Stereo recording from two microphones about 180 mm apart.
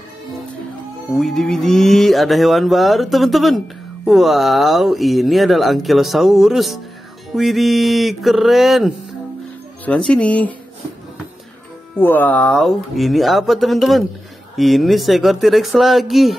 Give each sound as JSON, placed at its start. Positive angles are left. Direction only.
{"t": 1.1, "sound": "speech", "side_deg": 0}
{"t": 12.0, "sound": "speech", "side_deg": 10}